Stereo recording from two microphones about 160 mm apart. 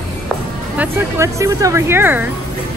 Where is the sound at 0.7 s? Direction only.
15° right (ahead or behind).